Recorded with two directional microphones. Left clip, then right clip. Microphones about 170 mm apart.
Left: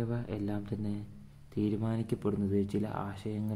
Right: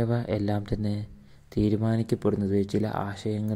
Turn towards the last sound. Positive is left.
turn(degrees=-30)  # may be behind; listen again after turning